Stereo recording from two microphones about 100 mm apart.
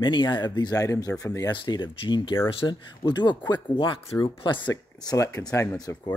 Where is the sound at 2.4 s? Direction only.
65° left (ahead or behind).